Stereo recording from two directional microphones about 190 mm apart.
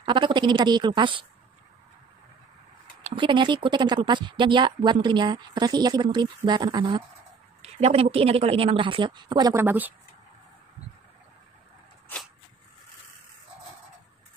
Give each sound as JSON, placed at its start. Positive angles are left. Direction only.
{"t": 0.0, "sound": "speech", "side_deg": -25}
{"t": 3.0, "sound": "speech", "side_deg": -25}
{"t": 7.6, "sound": "speech", "side_deg": -35}